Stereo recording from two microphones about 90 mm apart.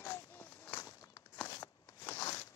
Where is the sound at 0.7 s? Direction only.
40° left (ahead or behind).